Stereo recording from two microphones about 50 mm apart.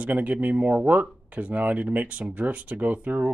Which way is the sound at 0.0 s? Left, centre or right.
Right.